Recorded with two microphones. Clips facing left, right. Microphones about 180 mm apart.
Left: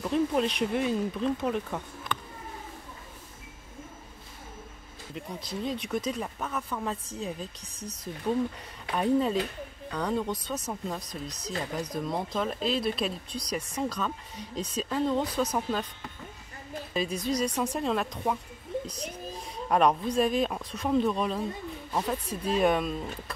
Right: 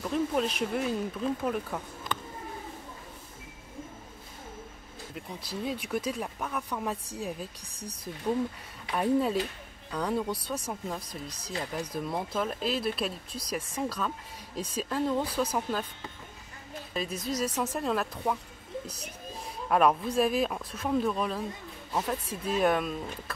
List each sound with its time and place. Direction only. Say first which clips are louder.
0.0 s speech: left 2 dB; centre (ahead or behind)
5.1 s speech: left 2 dB; 5° right (ahead or behind)
11.0 s speech: left 2 dB; 30° right (ahead or behind)
11.4 s speech: left 1 dB; 10° right (ahead or behind)
16.9 s speech: left 3 dB; centre (ahead or behind)
19.7 s speech: even; 5° right (ahead or behind)
22.3 s speech: left 1 dB; 5° right (ahead or behind)